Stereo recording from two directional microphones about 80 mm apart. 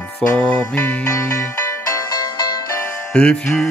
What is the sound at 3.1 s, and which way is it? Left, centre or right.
Mantra, centre.